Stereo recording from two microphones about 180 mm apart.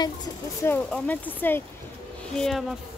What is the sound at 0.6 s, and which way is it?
A woman's voice, 10° left (ahead or behind).